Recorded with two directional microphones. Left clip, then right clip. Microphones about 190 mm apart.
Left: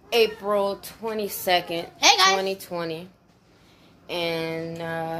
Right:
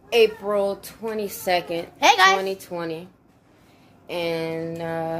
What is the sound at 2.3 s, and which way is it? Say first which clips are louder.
Speech: right 1 dB; centre (ahead or behind).